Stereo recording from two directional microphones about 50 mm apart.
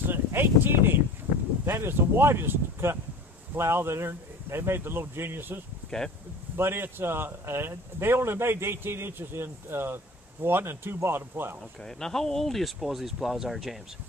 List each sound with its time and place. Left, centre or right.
0.1 s a sound: right
1.7 s speech: right
5.9 s speech: centre
6.5 s speech: right
11.8 s speech: centre